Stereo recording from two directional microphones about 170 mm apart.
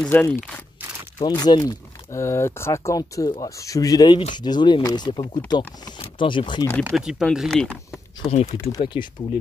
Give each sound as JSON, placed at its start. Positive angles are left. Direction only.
{"t": 0.0, "sound": "speech", "side_deg": 10}
{"t": 1.2, "sound": "speech", "side_deg": 25}
{"t": 7.0, "sound": "speech", "side_deg": -5}
{"t": 8.3, "sound": "speech", "side_deg": 35}